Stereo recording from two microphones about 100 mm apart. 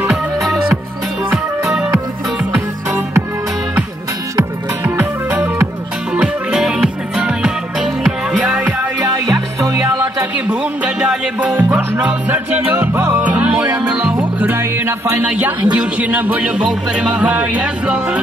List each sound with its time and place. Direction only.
0.0 s music: centre (ahead or behind)
4.8 s music: 20° right (ahead or behind)
6.1 s music: 5° right (ahead or behind)
9.6 s music: 30° right (ahead or behind)
10.5 s music: 10° right (ahead or behind)